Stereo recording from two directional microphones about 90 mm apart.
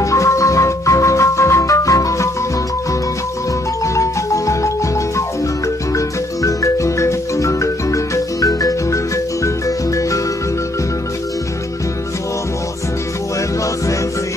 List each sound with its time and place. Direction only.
0.0 s music: 35° left (ahead or behind)
3.8 s music: 35° left (ahead or behind)
5.9 s marimba: 35° left (ahead or behind)